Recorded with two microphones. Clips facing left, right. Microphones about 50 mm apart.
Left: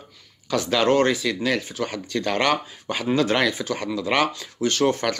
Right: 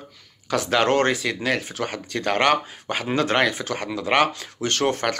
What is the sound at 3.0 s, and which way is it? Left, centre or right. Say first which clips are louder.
Speech: even; right.